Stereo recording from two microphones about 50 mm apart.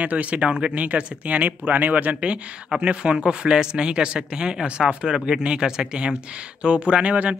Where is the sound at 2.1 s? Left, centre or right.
Right.